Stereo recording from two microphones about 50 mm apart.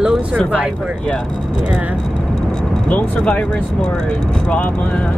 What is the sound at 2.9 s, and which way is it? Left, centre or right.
Speech, left.